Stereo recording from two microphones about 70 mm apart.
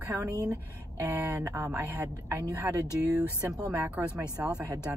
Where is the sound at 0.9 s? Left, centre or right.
Right.